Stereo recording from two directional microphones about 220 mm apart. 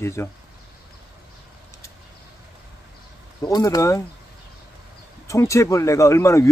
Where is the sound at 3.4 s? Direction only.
15° left (ahead or behind).